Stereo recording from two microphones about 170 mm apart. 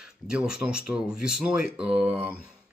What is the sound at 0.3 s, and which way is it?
Speech, 5° right (ahead or behind).